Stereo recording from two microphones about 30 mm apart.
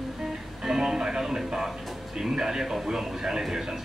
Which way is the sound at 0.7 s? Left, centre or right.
Centre.